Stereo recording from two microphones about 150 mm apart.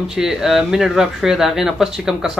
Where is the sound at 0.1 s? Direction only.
5° right (ahead or behind).